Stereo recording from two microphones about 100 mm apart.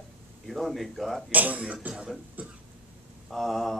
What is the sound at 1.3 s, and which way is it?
Speech, 15° right (ahead or behind).